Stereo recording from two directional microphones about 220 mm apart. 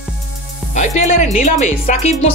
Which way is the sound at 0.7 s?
35° left (ahead or behind).